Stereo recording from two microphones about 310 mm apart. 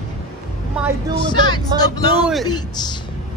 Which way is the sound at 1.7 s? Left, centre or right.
Centre.